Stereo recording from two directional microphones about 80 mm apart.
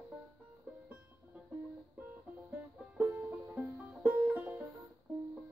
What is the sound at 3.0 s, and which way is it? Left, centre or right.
Music, right.